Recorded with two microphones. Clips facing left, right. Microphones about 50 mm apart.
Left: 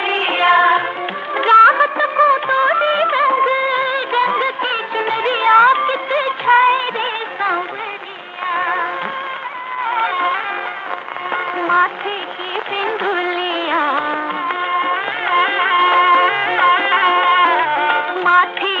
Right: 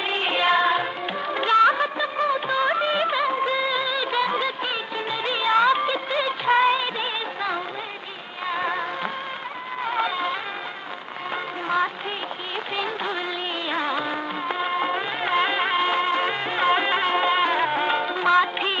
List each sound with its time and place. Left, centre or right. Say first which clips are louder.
0.0 s music: left 7 dB; left
1.3 s music of bollywood: left 9 dB; left
8.5 s music: left 7 dB; left
9.8 s music: left 7 dB; left
12.7 s music of bollywood: left 9 dB; left
13.7 s music: left 8 dB; left